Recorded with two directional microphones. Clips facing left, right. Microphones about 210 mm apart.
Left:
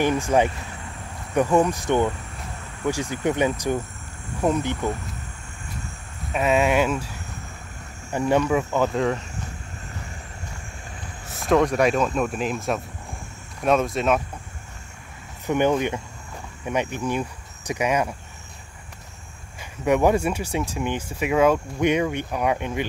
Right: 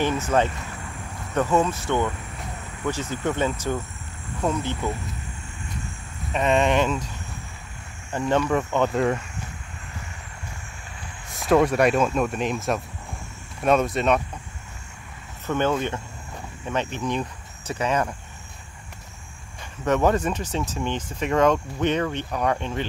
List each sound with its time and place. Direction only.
0.0 s speech: 15° left (ahead or behind)
6.3 s speech: 5° left (ahead or behind)
8.1 s speech: 10° left (ahead or behind)
11.3 s speech: 5° right (ahead or behind)
15.4 s speech: 15° left (ahead or behind)
19.6 s speech: 10° left (ahead or behind)